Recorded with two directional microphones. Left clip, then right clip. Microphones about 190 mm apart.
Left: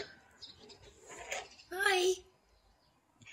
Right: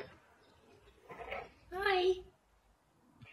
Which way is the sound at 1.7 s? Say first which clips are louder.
Left 1 dB; 15° left (ahead or behind).